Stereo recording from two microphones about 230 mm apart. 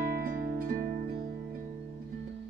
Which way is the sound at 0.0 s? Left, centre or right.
Right.